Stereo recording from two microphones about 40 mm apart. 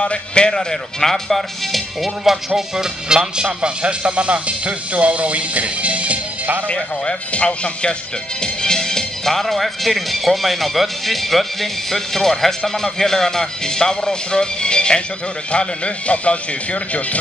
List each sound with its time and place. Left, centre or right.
0.0 s speech: left; by 3.2 s centre
3.6 s speech: right
6.7 s speech: left
8.4 s speech: centre; by 17.2 s left